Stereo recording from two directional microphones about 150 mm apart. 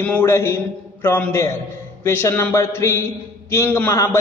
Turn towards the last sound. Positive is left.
turn(degrees=15)  # may be behind; listen again after turning